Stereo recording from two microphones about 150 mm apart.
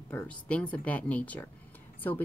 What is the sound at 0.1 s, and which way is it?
Speech, 10° left (ahead or behind).